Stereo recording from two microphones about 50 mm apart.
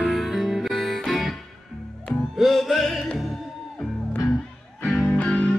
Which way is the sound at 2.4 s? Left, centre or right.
Centre.